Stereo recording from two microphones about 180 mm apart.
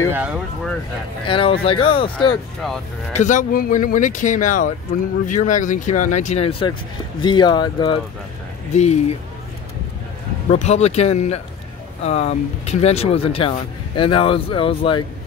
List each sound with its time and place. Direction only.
0.1 s speech: 5° right (ahead or behind)
1.2 s speech: 30° left (ahead or behind)
3.1 s speech: 45° left (ahead or behind); by 8.0 s 25° left (ahead or behind)
8.7 s speech: 40° left (ahead or behind)
10.5 s speech: 35° left (ahead or behind)